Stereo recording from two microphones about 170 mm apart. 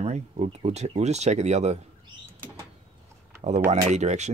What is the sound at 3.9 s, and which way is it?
Speech, 40° right (ahead or behind).